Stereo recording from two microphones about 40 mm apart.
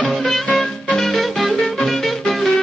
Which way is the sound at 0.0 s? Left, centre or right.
Left.